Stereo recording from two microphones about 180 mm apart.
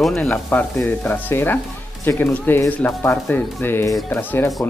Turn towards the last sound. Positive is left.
turn(degrees=10)  # may be behind; listen again after turning